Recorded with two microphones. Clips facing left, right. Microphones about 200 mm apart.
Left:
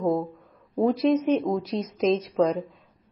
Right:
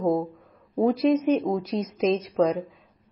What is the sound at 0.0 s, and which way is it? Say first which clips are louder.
A woman's voice: right 1 dB; centre (ahead or behind).